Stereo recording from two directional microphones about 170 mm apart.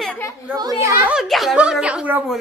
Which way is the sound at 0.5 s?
20° right (ahead or behind).